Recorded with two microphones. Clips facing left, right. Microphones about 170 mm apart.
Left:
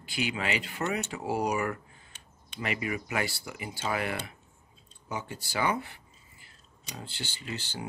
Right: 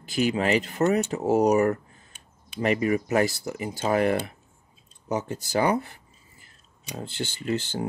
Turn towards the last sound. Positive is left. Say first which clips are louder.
# right 11 dB
turn(degrees=-50)  # may be behind; listen again after turning